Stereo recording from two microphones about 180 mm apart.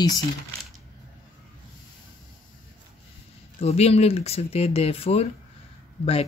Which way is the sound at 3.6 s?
35° left (ahead or behind).